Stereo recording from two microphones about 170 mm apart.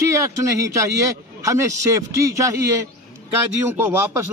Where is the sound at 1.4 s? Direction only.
20° right (ahead or behind).